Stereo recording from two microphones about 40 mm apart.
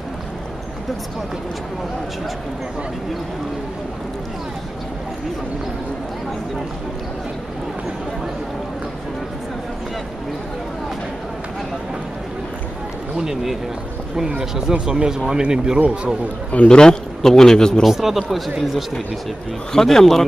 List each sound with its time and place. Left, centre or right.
13.1 s speech: centre
16.6 s a man's voice: centre
17.8 s speech: centre
19.7 s a man's voice: centre